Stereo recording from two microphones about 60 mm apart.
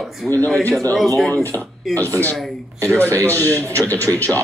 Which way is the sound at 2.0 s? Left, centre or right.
Left.